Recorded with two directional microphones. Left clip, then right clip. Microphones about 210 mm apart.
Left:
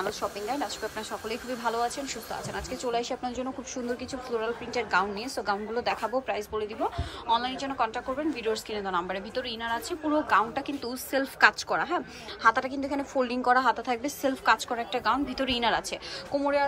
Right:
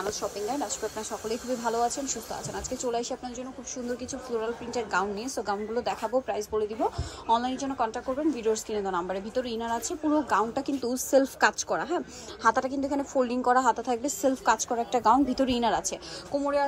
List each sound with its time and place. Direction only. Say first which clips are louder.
0.2 s a woman's voice: even; 15° right (ahead or behind)
4.3 s a woman's voice: even; 15° right (ahead or behind)